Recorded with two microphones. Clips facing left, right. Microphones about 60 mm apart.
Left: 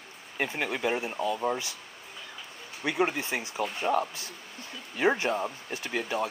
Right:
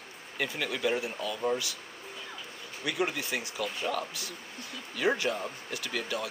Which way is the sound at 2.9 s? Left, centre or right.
Left.